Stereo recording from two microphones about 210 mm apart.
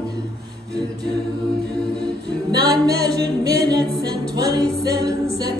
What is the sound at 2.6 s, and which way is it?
Music, 15° right (ahead or behind).